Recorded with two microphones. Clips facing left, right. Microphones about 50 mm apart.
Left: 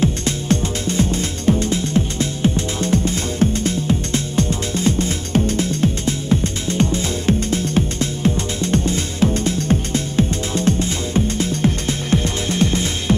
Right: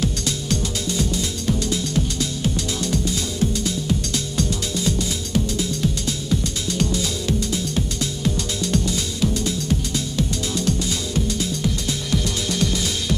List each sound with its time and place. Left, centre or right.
0.0 s music: left